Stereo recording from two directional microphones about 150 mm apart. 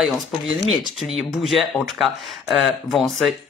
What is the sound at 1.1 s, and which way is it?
Speech, centre (ahead or behind).